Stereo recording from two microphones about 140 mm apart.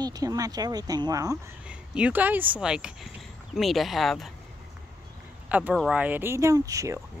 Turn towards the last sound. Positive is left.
turn(degrees=-25)  # may be behind; listen again after turning